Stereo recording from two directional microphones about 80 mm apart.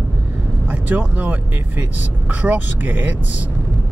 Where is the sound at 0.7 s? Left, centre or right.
Centre.